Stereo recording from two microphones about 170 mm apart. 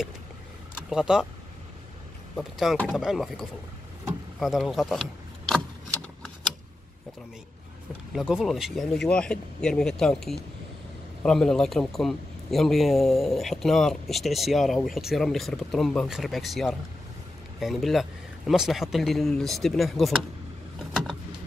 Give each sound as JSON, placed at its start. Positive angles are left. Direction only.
{"t": 0.8, "sound": "a man's voice", "side_deg": -5}
{"t": 2.3, "sound": "a man's voice", "side_deg": 0}
{"t": 8.1, "sound": "a man's voice", "side_deg": -5}